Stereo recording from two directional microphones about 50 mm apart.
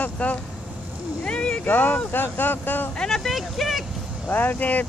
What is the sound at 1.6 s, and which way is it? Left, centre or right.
Speech, left.